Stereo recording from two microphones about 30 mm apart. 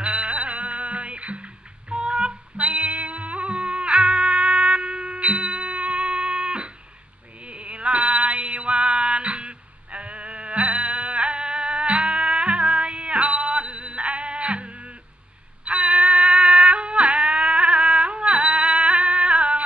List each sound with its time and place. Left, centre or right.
0.0 s music: right
2.6 s music: right
7.4 s music: right
18.3 s music: right